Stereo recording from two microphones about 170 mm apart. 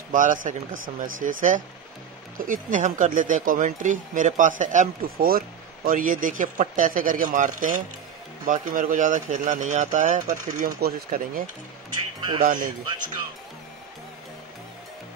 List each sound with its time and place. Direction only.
0.1 s speech: 50° right (ahead or behind)